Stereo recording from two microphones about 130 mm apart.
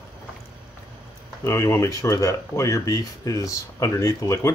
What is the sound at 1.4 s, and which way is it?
Speech, 20° left (ahead or behind).